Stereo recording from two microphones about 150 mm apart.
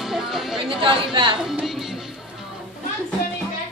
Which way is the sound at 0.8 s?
35° right (ahead or behind).